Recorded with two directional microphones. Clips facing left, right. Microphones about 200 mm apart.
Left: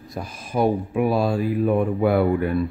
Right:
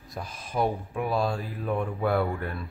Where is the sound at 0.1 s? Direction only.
Centre (ahead or behind).